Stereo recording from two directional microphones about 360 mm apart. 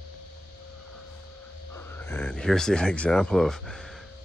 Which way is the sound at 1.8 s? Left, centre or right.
Centre.